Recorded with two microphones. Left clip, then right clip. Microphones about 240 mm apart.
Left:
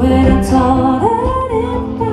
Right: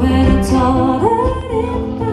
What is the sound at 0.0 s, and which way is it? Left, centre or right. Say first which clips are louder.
Music: left 3 dB; left.